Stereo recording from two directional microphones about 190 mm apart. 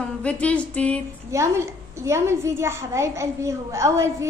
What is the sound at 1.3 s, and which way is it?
A woman's voice, 15° right (ahead or behind).